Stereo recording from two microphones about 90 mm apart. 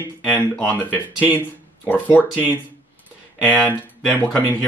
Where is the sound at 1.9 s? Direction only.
20° left (ahead or behind).